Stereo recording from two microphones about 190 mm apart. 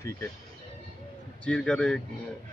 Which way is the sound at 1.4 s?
5° left (ahead or behind).